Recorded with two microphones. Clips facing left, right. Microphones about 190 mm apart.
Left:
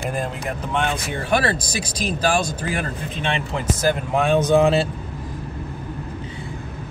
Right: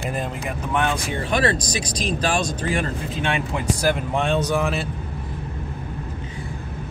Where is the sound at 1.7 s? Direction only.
5° left (ahead or behind).